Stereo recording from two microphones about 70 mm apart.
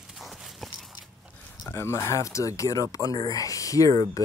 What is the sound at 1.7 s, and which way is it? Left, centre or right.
Speech, left.